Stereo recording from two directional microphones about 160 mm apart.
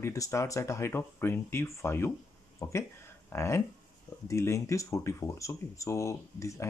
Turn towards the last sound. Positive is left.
turn(degrees=20)  # may be behind; listen again after turning